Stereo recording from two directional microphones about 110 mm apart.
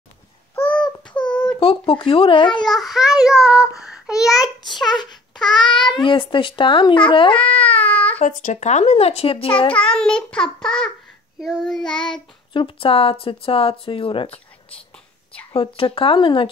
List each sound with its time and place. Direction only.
0.6 s a sound: 10° left (ahead or behind)
1.6 s speech: 55° left (ahead or behind)
2.6 s child singing: centre (ahead or behind)
4.9 s a sound: 40° left (ahead or behind)
5.5 s speech: 45° left (ahead or behind)
7.3 s baby cry: 15° left (ahead or behind)
8.2 s a child's voice: 90° left; by 9.8 s 55° left (ahead or behind)
9.8 s a child's voice: 10° left (ahead or behind)
11.3 s child singing: centre (ahead or behind)
12.5 s speech: 55° left (ahead or behind)
15.5 s speech: 55° left (ahead or behind)